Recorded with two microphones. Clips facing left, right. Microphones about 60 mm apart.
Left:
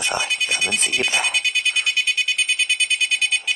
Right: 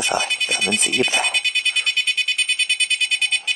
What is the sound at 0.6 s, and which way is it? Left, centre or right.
Speech, left.